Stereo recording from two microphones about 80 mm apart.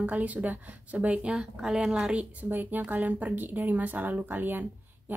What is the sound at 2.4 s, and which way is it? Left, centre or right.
Speech, right.